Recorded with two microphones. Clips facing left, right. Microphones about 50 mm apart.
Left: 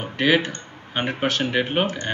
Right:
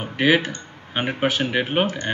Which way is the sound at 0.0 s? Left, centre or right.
Centre.